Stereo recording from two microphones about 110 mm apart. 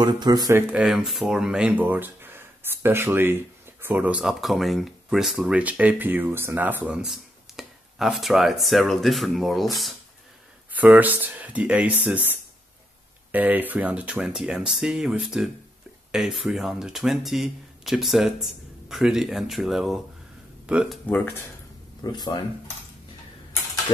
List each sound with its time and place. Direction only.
0.0 s speech: 40° right (ahead or behind)
0.6 s speech: 20° right (ahead or behind)
0.8 s speech: centre (ahead or behind)
10.7 s speech: 15° right (ahead or behind)
13.3 s speech: 15° right (ahead or behind)
22.0 s speech: 40° left (ahead or behind)